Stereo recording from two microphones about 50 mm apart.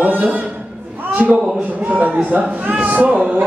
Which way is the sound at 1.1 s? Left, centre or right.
Right.